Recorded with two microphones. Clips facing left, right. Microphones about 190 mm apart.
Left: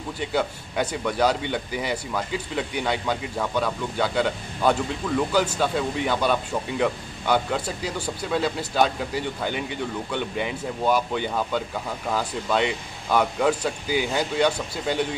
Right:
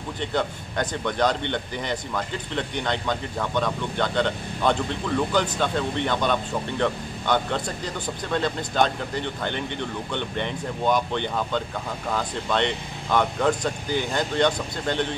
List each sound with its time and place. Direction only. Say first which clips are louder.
0.2 s speech: left 1 dB; 5° left (ahead or behind)